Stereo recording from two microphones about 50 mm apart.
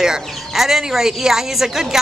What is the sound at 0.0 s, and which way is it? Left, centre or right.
Speech, centre.